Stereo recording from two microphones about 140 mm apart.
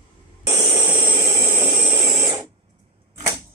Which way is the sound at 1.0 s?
35° right (ahead or behind).